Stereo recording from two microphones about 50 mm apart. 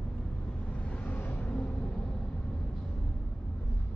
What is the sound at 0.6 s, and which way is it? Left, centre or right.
Vehicle, left.